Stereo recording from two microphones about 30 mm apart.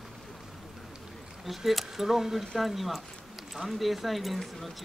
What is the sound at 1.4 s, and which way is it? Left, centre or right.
Speech, centre.